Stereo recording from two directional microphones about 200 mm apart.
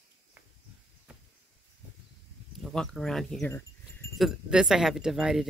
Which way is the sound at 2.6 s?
Centre (ahead or behind).